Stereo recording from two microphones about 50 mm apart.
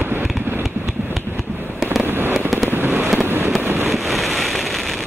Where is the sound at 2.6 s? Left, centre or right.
Right.